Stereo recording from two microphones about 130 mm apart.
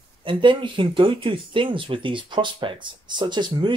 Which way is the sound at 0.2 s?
40° right (ahead or behind).